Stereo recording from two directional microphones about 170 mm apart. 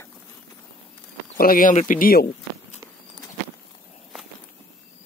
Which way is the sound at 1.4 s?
55° left (ahead or behind).